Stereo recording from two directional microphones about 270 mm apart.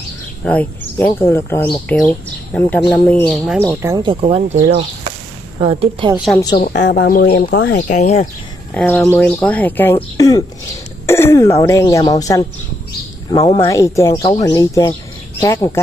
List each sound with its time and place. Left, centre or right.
0.4 s a woman's voice: centre
6.1 s speech: centre
6.5 s speech: left
7.9 s speech: left
8.7 s speech: centre